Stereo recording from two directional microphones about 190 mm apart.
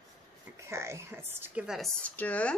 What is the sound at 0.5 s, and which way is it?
A woman's voice, 15° right (ahead or behind).